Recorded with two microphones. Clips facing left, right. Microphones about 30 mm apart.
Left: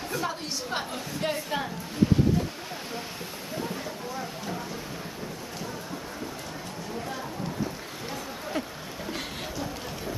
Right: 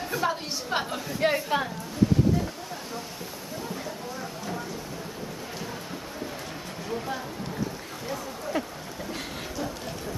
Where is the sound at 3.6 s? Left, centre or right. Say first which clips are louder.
Left 1 dB; centre.